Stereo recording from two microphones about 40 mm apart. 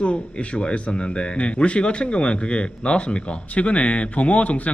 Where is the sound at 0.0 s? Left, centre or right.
Left.